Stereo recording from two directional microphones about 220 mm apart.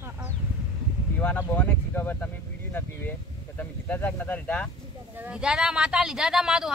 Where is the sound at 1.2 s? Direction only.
5° left (ahead or behind).